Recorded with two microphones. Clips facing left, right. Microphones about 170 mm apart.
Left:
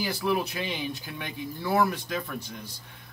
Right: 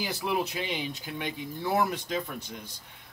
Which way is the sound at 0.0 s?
20° right (ahead or behind).